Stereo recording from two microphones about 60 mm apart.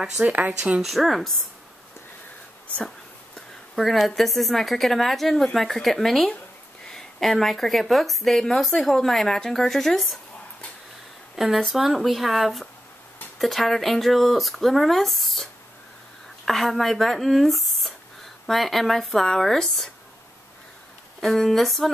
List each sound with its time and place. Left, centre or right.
0.2 s speech: right
0.8 s speech: centre
3.3 s speech: centre
11.3 s speech: centre
16.4 s speech: centre
21.2 s speech: centre